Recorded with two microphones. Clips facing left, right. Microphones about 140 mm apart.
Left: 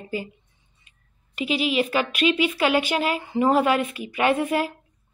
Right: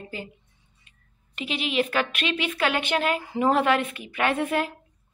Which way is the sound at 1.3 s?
5° left (ahead or behind).